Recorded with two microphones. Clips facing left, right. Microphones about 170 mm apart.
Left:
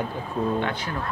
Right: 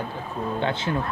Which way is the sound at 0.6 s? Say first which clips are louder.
Right 1 dB; 25° right (ahead or behind).